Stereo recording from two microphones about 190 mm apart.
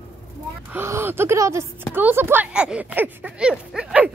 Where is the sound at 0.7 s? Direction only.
10° right (ahead or behind).